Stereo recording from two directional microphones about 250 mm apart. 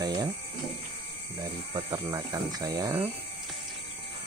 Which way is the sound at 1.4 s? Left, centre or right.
Centre.